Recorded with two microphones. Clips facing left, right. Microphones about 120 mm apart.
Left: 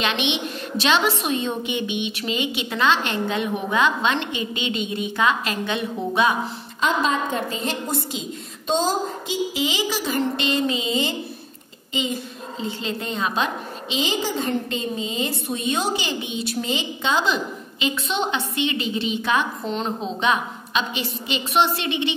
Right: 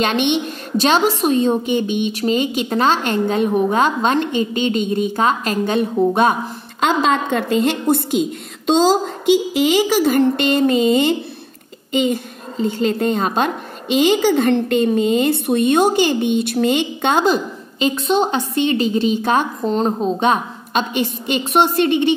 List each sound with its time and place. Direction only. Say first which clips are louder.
0.0 s a woman's voice: right 7 dB; 45° right (ahead or behind)
6.8 s a woman's voice: right 5 dB; 80° right; by 22.1 s 45° right (ahead or behind)